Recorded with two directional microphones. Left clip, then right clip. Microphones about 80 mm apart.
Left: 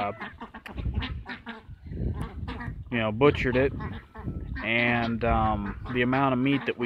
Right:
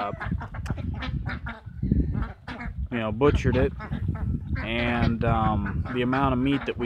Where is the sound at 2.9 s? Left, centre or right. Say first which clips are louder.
Left 1 dB; right.